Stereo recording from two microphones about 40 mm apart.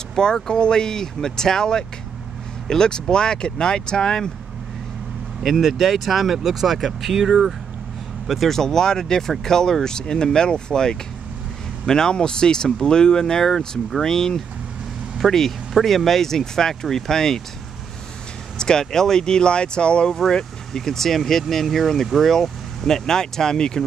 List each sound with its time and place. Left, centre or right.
0.1 s speech: centre
5.4 s speech: centre
18.6 s speech: centre